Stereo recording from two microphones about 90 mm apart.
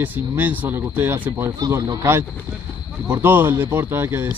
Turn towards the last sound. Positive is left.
turn(degrees=-25)  # may be behind; listen again after turning